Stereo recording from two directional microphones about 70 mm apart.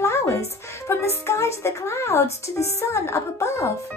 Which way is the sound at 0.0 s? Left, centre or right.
Left.